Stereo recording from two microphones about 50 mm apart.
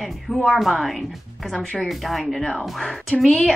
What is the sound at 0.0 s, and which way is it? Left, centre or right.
A woman's voice, centre.